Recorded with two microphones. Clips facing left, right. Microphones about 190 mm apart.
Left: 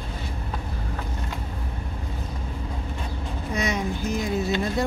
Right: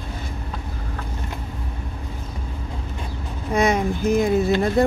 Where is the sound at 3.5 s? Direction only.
55° right (ahead or behind).